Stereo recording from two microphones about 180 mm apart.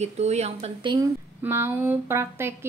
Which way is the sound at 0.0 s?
40° right (ahead or behind).